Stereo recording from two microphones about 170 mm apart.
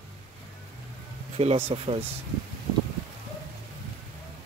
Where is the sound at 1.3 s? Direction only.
35° right (ahead or behind).